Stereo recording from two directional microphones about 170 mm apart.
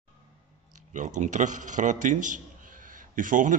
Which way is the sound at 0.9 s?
45° right (ahead or behind).